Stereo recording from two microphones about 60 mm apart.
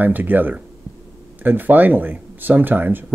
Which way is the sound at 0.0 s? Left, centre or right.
Right.